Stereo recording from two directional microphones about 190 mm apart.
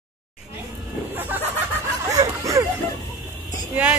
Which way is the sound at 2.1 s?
20° right (ahead or behind).